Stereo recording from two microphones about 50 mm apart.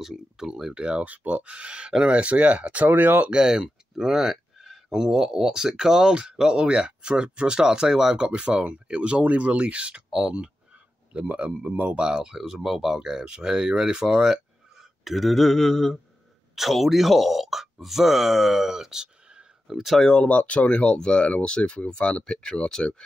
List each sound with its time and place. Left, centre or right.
0.0 s speech: centre
1.0 s speech: right
3.3 s speech: centre
10.0 s speech: centre
11.1 s speech: right
12.0 s speech: centre
19.7 s speech: centre
20.0 s speech: centre
20.2 s speech: left